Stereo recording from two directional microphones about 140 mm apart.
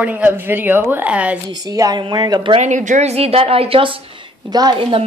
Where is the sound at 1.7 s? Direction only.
30° right (ahead or behind).